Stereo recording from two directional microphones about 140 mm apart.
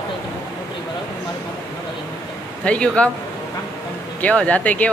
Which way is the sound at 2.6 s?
10° left (ahead or behind).